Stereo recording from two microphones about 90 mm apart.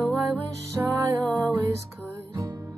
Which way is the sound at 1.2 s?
20° left (ahead or behind).